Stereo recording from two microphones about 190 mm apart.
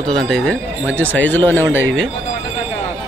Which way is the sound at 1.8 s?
90° right.